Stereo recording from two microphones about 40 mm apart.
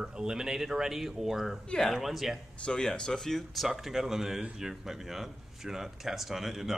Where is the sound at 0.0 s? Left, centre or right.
Centre.